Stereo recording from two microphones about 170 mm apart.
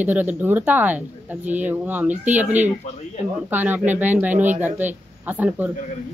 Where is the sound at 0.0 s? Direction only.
10° right (ahead or behind).